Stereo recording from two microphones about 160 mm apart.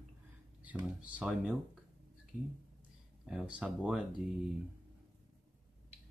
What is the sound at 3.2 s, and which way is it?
Speech, 5° right (ahead or behind).